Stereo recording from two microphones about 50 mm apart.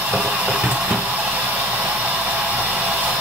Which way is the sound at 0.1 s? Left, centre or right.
Right.